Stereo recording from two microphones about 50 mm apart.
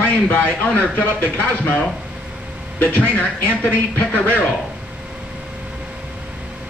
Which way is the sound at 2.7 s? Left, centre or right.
Left.